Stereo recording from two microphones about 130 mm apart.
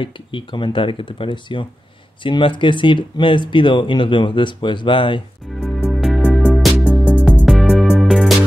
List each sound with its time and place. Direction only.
0.0 s speech: 40° left (ahead or behind)
5.9 s music: centre (ahead or behind)